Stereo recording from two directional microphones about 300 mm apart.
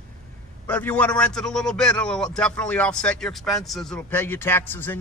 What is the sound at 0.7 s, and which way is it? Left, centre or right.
A man's voice, centre.